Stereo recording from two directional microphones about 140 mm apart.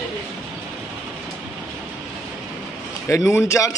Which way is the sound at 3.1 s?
20° left (ahead or behind).